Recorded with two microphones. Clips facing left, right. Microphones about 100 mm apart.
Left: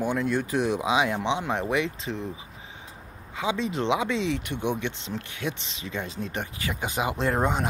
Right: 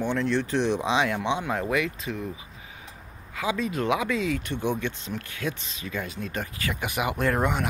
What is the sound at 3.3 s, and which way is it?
Speech, 20° left (ahead or behind).